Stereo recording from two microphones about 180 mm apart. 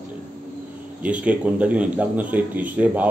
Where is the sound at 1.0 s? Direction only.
5° right (ahead or behind).